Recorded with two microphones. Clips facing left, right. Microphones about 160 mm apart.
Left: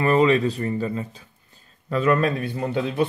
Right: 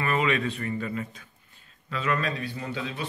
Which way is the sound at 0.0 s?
35° left (ahead or behind).